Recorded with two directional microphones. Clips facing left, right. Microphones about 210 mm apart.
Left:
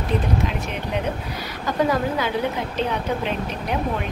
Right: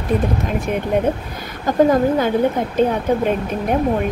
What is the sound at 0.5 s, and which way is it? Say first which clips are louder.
A woman's voice: right 7 dB; 50° right (ahead or behind).